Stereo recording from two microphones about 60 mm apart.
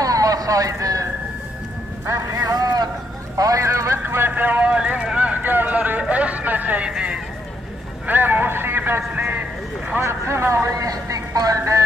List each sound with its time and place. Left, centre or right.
0.0 s a sound: right
2.0 s vehicle: right
3.3 s speech: right
3.6 s speech: right
4.0 s speech: right
4.3 s vehicle: right
5.4 s a sound: right
8.1 s speech: right
10.0 s speech: right
10.8 s speech: right